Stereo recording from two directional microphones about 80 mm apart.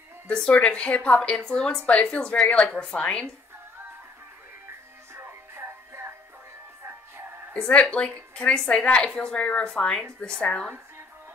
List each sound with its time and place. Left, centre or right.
0.3 s a woman's voice: centre
5.1 s music: right
7.5 s a woman's voice: centre